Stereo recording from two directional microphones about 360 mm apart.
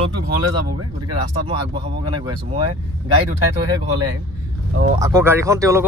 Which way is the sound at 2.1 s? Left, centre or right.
Centre.